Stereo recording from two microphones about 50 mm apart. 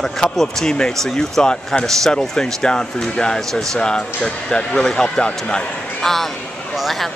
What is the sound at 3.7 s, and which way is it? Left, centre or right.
Speech, centre.